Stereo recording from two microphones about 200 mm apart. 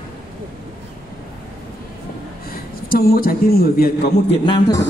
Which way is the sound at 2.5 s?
50° left (ahead or behind).